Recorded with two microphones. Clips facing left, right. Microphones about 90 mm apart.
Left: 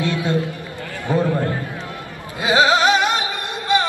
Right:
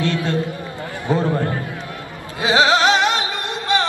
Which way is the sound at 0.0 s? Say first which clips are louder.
Even; 15° left (ahead or behind).